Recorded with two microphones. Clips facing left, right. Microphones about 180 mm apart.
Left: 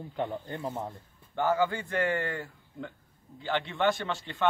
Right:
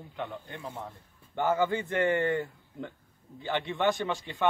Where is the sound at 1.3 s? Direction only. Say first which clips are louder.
Even; 20° right (ahead or behind).